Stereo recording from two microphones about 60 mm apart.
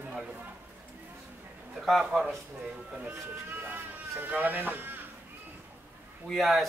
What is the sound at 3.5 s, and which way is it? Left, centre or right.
Speech, right.